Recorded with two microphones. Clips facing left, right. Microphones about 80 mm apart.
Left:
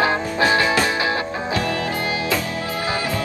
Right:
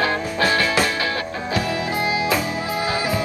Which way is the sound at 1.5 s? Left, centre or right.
Centre.